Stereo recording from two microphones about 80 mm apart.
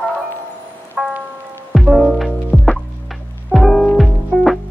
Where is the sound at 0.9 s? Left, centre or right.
Centre.